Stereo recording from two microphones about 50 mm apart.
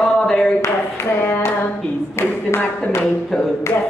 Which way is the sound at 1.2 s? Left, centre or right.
Left.